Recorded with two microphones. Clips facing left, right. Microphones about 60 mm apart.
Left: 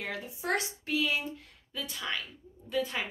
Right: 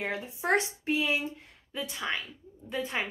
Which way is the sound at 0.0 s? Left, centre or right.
Right.